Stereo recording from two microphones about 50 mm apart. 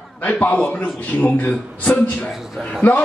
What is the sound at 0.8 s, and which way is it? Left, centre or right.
A man's voice, left.